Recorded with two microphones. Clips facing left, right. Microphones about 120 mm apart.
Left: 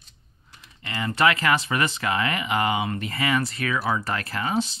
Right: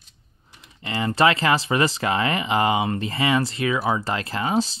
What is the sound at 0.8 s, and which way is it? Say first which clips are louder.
Speech: right 3 dB; 30° right (ahead or behind).